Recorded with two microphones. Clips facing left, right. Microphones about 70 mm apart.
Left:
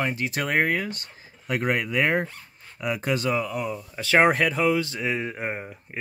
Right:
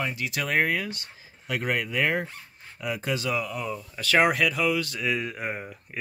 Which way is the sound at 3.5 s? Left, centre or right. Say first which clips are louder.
Left 3 dB; centre.